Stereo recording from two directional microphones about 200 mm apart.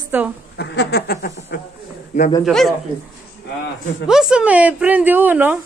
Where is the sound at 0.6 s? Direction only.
55° left (ahead or behind).